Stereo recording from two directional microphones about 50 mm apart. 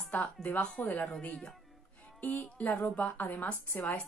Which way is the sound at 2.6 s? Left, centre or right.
Left.